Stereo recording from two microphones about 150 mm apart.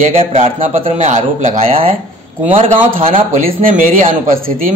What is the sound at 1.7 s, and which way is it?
A man's voice, 40° right (ahead or behind).